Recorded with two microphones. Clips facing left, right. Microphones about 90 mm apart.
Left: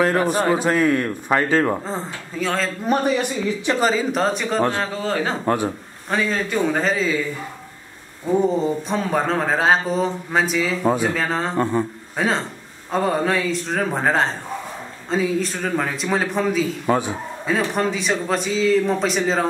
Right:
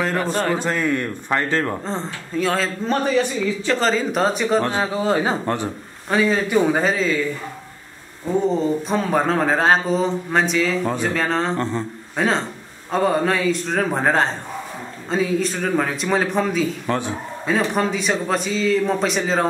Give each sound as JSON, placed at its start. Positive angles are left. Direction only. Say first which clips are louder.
{"t": 0.0, "sound": "a man's voice", "louder": "left 3 dB", "side_deg": 10}
{"t": 2.8, "sound": "a man's voice", "louder": "left 1 dB", "side_deg": 15}
{"t": 3.9, "sound": "speech", "louder": "even", "side_deg": 0}
{"t": 4.9, "sound": "a man's voice", "louder": "right 3 dB", "side_deg": -15}
{"t": 5.4, "sound": "speech", "louder": "left 3 dB", "side_deg": 10}
{"t": 8.8, "sound": "speech", "louder": "right 2 dB", "side_deg": 0}
{"t": 16.8, "sound": "a man's voice", "louder": "left 3 dB", "side_deg": 10}
{"t": 17.5, "sound": "speech", "louder": "right 1 dB", "side_deg": 0}